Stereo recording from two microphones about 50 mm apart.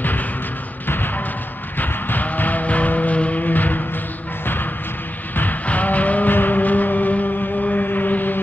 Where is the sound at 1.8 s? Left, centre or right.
Left.